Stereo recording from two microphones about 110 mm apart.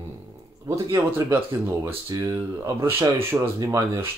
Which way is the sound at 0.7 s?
35° right (ahead or behind).